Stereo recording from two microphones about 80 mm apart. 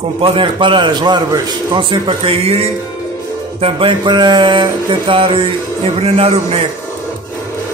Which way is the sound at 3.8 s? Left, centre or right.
Right.